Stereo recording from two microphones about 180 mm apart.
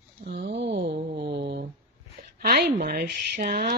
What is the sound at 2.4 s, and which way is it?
Speech, 55° right (ahead or behind).